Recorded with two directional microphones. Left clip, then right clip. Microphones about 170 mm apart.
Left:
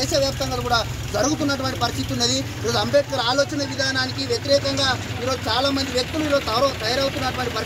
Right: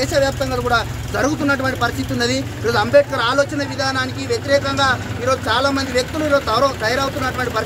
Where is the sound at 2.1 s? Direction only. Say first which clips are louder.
Right 3 dB; 5° right (ahead or behind).